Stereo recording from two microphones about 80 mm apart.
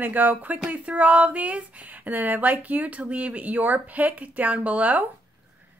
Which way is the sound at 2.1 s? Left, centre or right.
Right.